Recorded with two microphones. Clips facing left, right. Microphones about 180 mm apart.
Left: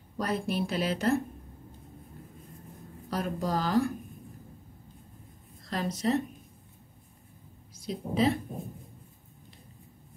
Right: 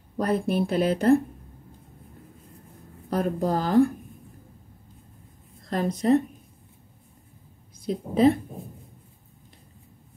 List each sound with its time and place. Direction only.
0.2 s a woman's voice: 55° right (ahead or behind)
3.1 s a woman's voice: 50° right (ahead or behind)
5.7 s a woman's voice: 55° right (ahead or behind)
7.8 s a woman's voice: 50° right (ahead or behind)